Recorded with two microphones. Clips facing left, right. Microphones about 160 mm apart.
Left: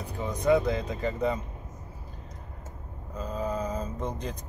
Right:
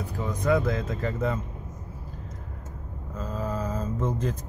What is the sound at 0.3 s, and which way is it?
Speech, 20° left (ahead or behind).